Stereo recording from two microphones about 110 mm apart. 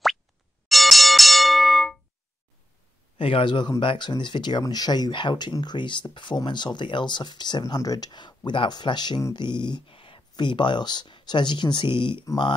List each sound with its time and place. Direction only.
0.7 s music: centre (ahead or behind)
3.2 s speech: 55° left (ahead or behind)